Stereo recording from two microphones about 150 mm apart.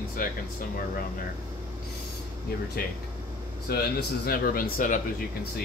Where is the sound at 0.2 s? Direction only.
70° left (ahead or behind).